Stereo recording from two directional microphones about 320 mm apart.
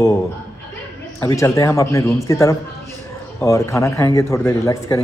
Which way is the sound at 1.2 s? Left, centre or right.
Centre.